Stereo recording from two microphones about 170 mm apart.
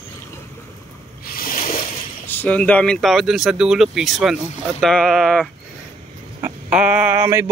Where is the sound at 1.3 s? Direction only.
55° left (ahead or behind).